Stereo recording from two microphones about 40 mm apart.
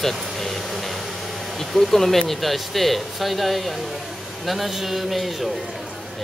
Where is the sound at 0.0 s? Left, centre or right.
Centre.